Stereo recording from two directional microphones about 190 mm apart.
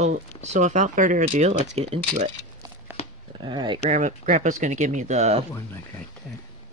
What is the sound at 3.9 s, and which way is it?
Speech, 40° right (ahead or behind).